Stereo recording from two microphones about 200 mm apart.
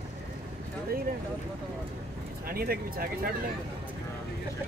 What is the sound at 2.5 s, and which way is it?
Speech, 50° right (ahead or behind).